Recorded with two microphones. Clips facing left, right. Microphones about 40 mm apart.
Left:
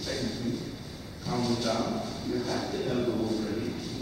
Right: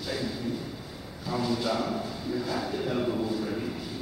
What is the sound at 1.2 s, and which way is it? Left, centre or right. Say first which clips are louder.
Speech: even; centre.